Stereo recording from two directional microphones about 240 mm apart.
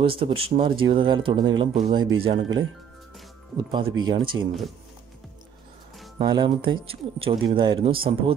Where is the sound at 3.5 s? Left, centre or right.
Centre.